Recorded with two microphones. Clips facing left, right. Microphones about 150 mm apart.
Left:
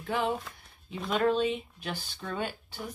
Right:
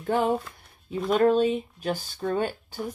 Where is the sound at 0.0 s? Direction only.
45° right (ahead or behind).